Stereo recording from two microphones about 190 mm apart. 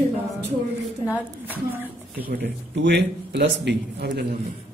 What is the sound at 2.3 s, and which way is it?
A man's voice, 60° right (ahead or behind).